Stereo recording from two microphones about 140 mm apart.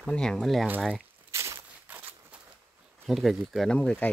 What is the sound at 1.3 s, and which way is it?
Walk, 20° right (ahead or behind).